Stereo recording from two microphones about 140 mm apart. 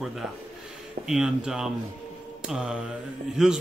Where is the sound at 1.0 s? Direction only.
5° right (ahead or behind).